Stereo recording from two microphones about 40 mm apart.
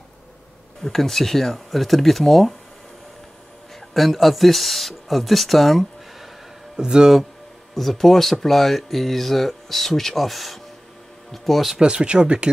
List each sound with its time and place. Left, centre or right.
0.8 s speech: centre
3.9 s speech: centre
6.8 s speech: centre
7.7 s speech: centre
11.7 s speech: right